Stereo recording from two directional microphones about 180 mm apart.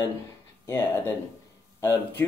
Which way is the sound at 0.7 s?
15° left (ahead or behind).